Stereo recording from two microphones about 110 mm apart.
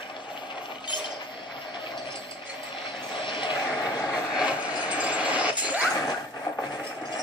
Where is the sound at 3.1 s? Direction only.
50° left (ahead or behind).